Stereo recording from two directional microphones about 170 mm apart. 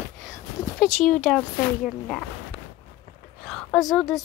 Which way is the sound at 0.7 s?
Centre (ahead or behind).